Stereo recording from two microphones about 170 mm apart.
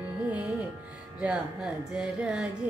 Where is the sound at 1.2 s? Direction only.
5° right (ahead or behind).